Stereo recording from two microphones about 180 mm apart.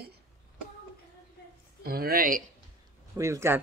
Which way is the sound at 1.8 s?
60° right (ahead or behind).